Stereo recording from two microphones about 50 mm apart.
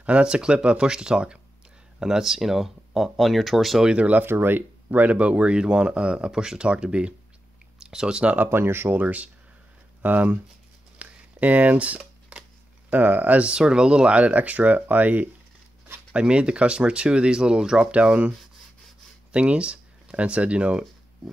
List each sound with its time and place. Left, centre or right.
0.0 s speech: right; by 3.8 s centre
3.8 s speech: right
4.2 s speech: right
4.9 s speech: right
8.4 s speech: right
8.8 s speech: right
11.0 s shuffling cards: right
12.9 s speech: right
13.4 s speech: centre; by 15.2 s right
16.1 s speech: right
17.9 s speech: right
19.3 s speech: right